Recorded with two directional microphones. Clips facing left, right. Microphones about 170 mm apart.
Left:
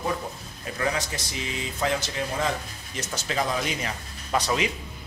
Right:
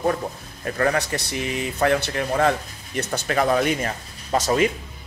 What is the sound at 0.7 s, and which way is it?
Speech, 60° right (ahead or behind).